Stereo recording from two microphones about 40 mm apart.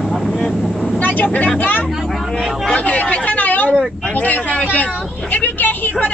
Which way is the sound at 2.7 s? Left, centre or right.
Left.